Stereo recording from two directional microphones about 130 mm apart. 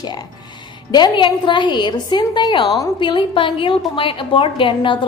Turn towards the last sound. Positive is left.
turn(degrees=40)  # may be behind; listen again after turning